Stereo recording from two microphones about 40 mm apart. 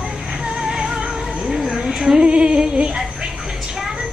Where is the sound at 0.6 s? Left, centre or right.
Centre.